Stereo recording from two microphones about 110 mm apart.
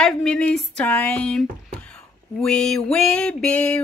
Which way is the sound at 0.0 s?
5° left (ahead or behind).